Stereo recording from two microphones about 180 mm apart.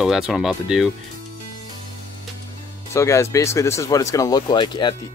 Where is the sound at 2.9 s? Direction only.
15° left (ahead or behind).